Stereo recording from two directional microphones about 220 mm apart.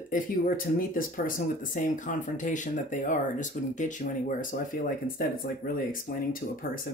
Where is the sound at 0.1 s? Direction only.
40° left (ahead or behind).